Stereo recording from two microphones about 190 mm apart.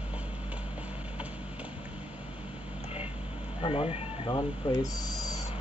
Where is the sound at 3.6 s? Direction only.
30° left (ahead or behind).